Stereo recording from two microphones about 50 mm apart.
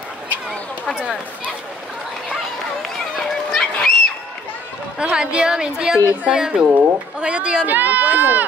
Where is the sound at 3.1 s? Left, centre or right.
Centre.